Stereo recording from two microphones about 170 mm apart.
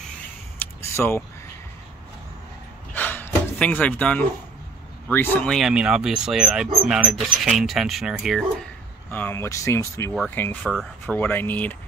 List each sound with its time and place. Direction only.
0.7 s a sound: 15° left (ahead or behind)
2.9 s a sound: 10° left (ahead or behind)
5.0 s speech: 10° left (ahead or behind)
9.1 s speech: 15° left (ahead or behind)
10.7 s speech: centre (ahead or behind)
11.1 s speech: 10° left (ahead or behind)